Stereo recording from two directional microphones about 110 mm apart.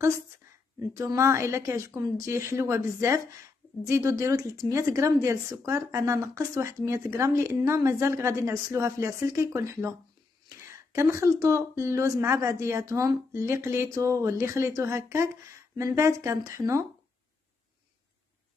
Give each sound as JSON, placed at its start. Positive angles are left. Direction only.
{"t": 0.7, "sound": "speech", "side_deg": -30}